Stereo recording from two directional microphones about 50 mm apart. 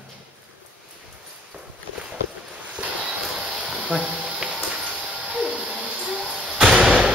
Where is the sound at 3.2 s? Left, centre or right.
Centre.